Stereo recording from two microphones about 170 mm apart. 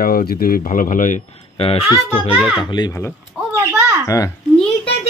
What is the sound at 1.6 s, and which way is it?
Speech, 35° left (ahead or behind).